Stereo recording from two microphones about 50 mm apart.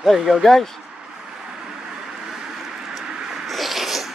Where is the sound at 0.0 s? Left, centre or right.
Centre.